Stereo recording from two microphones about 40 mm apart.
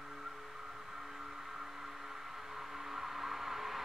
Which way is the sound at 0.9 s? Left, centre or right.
Centre.